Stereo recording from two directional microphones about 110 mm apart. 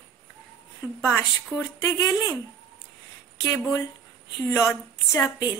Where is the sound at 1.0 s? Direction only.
20° left (ahead or behind).